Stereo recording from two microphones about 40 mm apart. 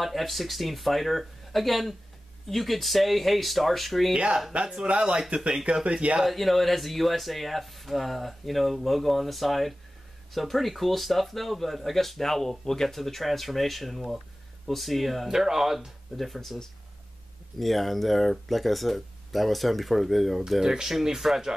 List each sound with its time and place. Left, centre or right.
0.0 s speech: centre
4.5 s speech: right
6.2 s speech: centre
15.3 s speech: centre
16.2 s speech: centre
17.6 s speech: centre
20.6 s speech: centre